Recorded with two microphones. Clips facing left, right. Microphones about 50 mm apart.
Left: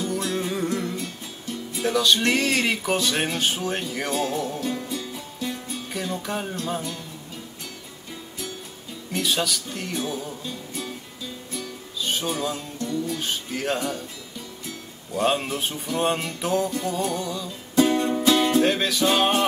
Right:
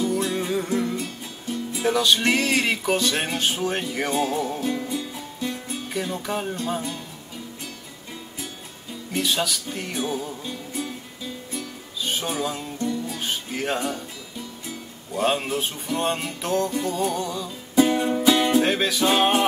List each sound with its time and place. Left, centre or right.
0.0 s music: centre
9.1 s music: centre
12.2 s music: centre
15.1 s music: centre